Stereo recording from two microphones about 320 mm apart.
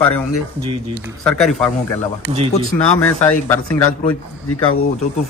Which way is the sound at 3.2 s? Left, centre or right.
Centre.